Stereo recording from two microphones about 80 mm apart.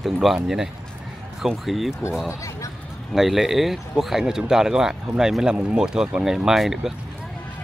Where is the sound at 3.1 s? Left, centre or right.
Centre.